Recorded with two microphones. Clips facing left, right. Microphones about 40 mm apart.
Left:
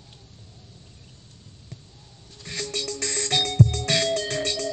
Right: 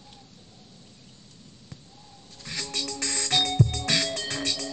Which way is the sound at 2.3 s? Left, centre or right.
Left.